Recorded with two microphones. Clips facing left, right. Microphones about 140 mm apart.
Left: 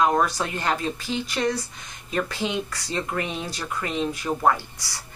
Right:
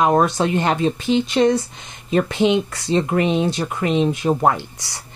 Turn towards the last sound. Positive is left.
turn(degrees=-20)  # may be behind; listen again after turning